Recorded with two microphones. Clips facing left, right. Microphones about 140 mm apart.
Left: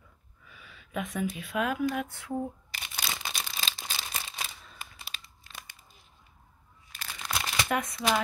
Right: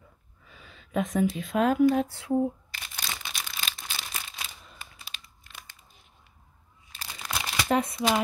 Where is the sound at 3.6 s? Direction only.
30° left (ahead or behind).